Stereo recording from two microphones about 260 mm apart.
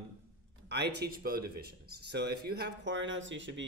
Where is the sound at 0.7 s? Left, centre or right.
Right.